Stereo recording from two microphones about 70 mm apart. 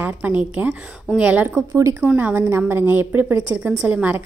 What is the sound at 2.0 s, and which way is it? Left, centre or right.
Speech, right.